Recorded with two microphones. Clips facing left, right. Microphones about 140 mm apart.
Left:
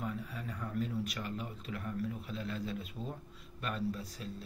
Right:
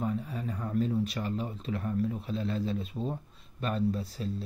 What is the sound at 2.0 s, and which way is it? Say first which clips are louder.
Speech: right 7 dB; 30° right (ahead or behind).